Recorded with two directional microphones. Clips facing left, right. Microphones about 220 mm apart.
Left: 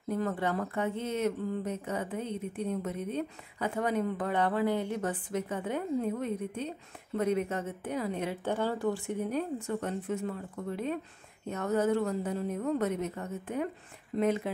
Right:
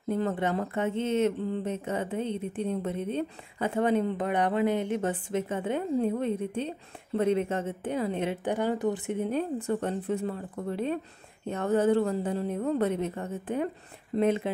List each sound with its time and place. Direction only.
0.1 s a woman's voice: 25° right (ahead or behind)